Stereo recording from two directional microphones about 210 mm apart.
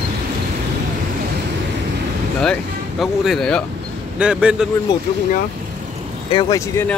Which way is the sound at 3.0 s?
Centre (ahead or behind).